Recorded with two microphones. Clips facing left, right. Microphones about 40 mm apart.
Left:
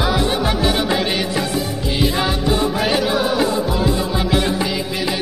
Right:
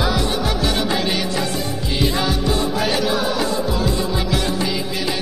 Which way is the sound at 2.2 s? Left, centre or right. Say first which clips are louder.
Left 2 dB; centre.